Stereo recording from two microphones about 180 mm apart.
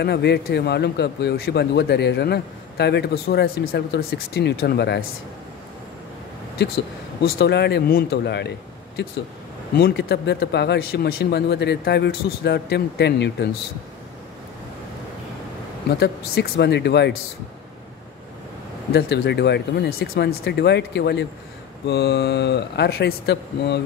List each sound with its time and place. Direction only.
0.0 s speech: 70° left (ahead or behind)
7.2 s speech: 65° left (ahead or behind)
9.8 s speech: 60° left (ahead or behind)
15.9 s speech: 65° left (ahead or behind)
18.9 s speech: 65° left (ahead or behind)